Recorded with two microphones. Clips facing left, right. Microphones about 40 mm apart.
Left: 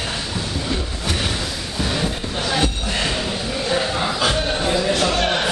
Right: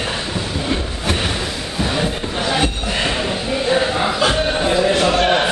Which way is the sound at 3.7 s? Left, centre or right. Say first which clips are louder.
Right 3 dB; centre.